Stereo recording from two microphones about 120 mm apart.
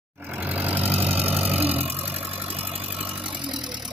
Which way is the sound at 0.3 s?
15° right (ahead or behind).